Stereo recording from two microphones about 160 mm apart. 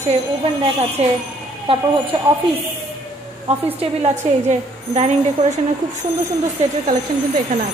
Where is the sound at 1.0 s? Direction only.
40° right (ahead or behind).